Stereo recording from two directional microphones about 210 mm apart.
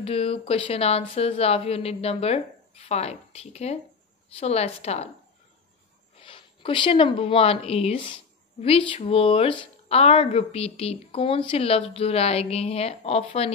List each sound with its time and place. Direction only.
0.0 s speech: 25° left (ahead or behind)
6.1 s speech: 25° left (ahead or behind)